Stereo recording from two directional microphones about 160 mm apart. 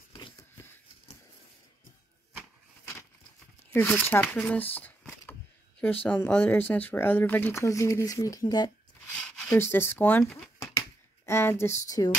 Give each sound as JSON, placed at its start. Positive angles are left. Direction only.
{"t": 3.7, "sound": "speech", "side_deg": 10}
{"t": 4.7, "sound": "shuffling cards", "side_deg": 15}
{"t": 6.0, "sound": "speech", "side_deg": 10}
{"t": 9.2, "sound": "speech", "side_deg": 10}
{"t": 10.6, "sound": "a sound", "side_deg": 15}